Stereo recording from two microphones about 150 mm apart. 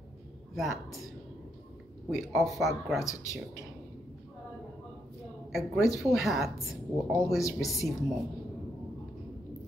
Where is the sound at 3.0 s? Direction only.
20° left (ahead or behind).